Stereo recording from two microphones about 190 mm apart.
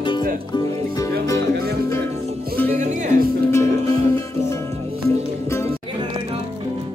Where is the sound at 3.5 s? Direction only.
15° left (ahead or behind).